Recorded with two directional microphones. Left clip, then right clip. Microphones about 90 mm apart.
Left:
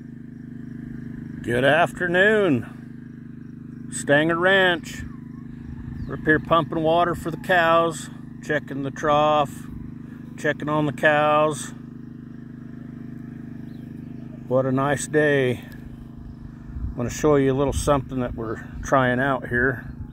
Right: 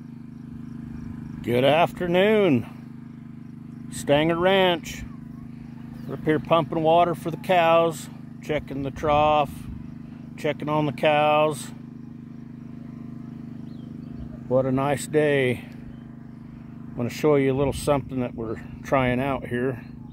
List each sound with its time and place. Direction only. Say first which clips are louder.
1.4 s speech: left 1 dB; 55° right (ahead or behind)
2.0 s speech: left 2 dB; 60° right (ahead or behind)
4.0 s speech: left 2 dB; 50° right (ahead or behind)
6.2 s speech: left 2 dB; 45° right (ahead or behind)
14.5 s speech: left 1 dB; 45° right (ahead or behind)
14.9 s speech: left 2 dB; 35° right (ahead or behind)
16.9 s speech: left 1 dB; 25° right (ahead or behind)